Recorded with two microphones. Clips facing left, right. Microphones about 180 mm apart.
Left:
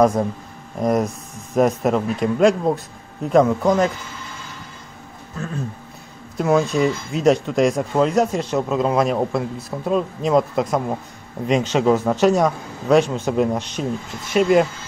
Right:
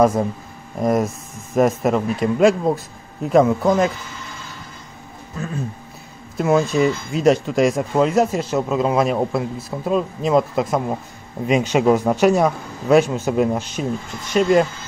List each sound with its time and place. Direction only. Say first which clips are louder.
0.0 s speech: even; 5° right (ahead or behind)
6.3 s speech: right 1 dB; centre (ahead or behind)